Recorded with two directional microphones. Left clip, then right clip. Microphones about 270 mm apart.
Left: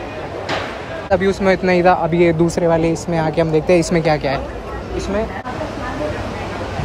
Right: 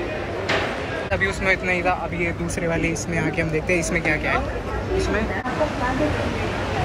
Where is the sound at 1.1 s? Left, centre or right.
Left.